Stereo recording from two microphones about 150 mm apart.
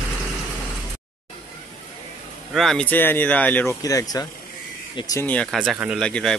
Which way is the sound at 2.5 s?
5° left (ahead or behind).